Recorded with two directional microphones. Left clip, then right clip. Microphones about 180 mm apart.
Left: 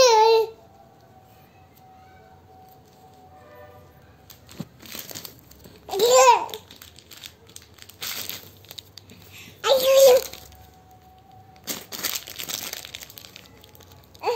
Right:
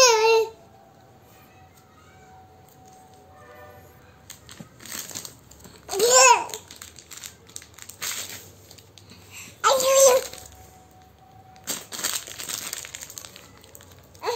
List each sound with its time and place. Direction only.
0.0 s babbling: 20° right (ahead or behind)
5.9 s babbling: 25° right (ahead or behind)
9.3 s a sound: 20° right (ahead or behind)
11.6 s crumpling: 5° left (ahead or behind)